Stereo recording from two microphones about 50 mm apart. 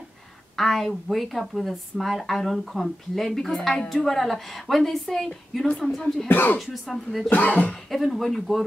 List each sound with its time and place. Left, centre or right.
0.6 s a woman's voice: centre
6.2 s speech: left
6.6 s a woman's voice: centre
7.2 s speech: left
7.9 s a woman's voice: centre